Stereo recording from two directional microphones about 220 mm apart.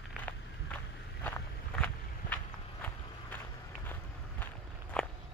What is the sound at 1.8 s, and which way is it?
Vehicle, 10° left (ahead or behind).